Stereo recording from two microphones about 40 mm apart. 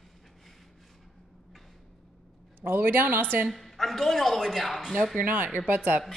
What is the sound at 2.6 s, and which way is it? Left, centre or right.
Speech, right.